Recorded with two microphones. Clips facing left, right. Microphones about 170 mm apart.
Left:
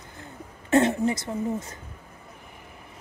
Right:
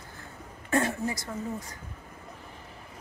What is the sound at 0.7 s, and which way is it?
A woman's voice, 20° left (ahead or behind).